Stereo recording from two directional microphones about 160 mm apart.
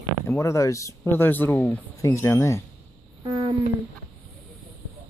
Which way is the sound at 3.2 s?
25° right (ahead or behind).